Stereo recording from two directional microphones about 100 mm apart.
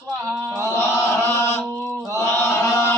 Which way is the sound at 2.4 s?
25° left (ahead or behind).